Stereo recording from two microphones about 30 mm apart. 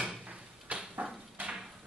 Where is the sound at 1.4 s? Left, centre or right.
Right.